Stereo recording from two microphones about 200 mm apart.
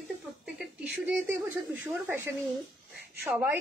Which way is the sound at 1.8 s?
10° right (ahead or behind).